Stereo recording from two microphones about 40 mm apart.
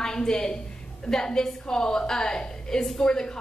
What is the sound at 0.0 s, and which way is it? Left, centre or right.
A woman's voice, centre.